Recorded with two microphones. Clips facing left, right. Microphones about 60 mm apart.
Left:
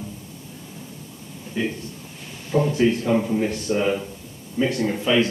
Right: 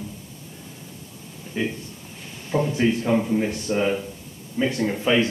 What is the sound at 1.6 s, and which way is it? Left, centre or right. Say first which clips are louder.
A man's voice: left 1 dB; centre.